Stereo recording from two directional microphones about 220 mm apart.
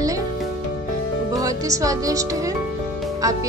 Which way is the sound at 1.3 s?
15° right (ahead or behind).